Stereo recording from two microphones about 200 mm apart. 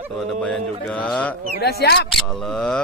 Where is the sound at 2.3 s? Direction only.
Centre (ahead or behind).